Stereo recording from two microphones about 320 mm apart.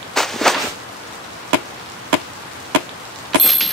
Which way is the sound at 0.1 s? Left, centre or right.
Centre.